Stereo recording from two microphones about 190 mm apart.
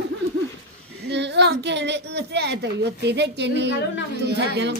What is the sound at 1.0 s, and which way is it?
A woman's voice, 65° right (ahead or behind).